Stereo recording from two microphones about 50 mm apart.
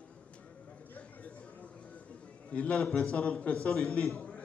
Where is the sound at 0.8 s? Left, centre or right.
Left.